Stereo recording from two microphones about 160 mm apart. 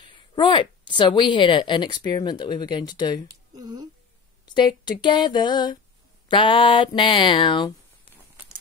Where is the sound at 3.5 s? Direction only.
25° right (ahead or behind).